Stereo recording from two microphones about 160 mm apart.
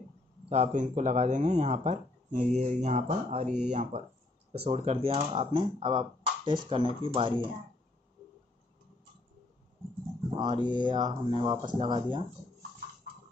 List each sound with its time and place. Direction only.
0.5 s speech: 50° right (ahead or behind); by 7.4 s 30° right (ahead or behind)
10.3 s speech: 30° right (ahead or behind)